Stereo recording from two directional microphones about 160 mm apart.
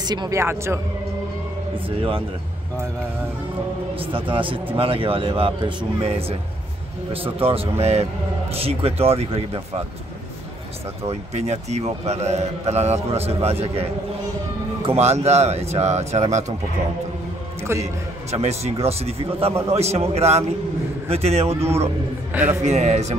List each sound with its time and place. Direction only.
0.0 s speech: 25° right (ahead or behind)
1.9 s a man's voice: 35° right (ahead or behind)
4.0 s a man's voice: 35° right (ahead or behind)
11.1 s a man's voice: 45° right (ahead or behind)
14.9 s speech: 45° right (ahead or behind)
18.3 s a man's voice: 40° right (ahead or behind)
22.6 s speech: 45° right (ahead or behind)